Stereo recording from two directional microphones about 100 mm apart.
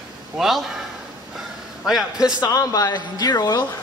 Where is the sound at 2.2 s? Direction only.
35° left (ahead or behind).